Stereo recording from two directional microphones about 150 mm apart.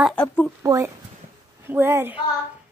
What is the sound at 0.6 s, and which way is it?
Speech, 20° right (ahead or behind).